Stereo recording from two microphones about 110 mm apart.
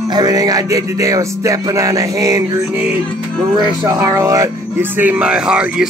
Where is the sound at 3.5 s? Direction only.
30° right (ahead or behind).